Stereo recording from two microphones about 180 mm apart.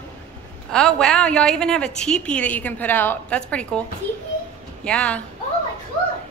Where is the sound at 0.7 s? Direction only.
5° left (ahead or behind).